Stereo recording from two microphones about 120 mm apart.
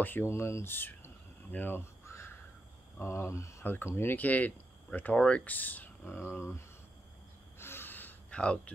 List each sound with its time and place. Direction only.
0.0 s a sound: 20° left (ahead or behind)
3.0 s speech: 20° left (ahead or behind)
7.5 s gasp: 20° left (ahead or behind)